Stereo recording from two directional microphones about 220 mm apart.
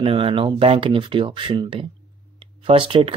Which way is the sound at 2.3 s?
25° right (ahead or behind).